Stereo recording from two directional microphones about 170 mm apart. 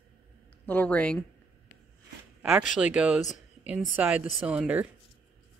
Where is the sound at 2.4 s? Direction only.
10° right (ahead or behind).